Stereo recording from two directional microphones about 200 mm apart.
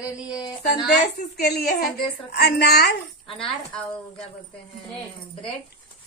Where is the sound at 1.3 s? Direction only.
55° left (ahead or behind).